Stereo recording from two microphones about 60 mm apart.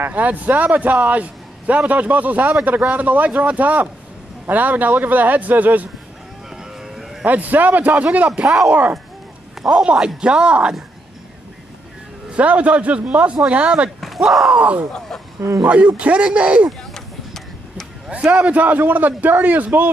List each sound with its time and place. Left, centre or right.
0.1 s a man's voice: right
6.5 s cattle: centre
7.2 s a man's voice: right
8.3 s speech: centre
12.3 s a man's voice: right
14.0 s speech: centre
14.5 s a man's voice: right
14.9 s speech: centre
15.6 s a man's voice: right
16.9 s vehicle: centre
18.1 s a man's voice: right